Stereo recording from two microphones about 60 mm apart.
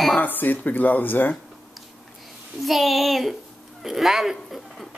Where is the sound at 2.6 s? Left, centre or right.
Centre.